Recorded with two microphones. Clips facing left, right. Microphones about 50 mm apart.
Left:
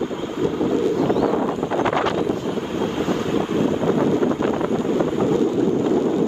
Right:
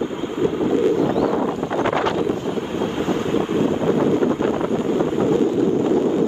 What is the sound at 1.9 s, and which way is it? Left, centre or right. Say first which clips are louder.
Wind noise: even; right.